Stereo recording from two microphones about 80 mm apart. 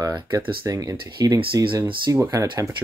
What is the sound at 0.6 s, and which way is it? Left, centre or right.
Speech, right.